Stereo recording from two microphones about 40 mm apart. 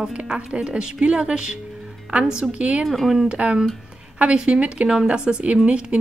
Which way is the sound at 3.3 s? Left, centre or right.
Right.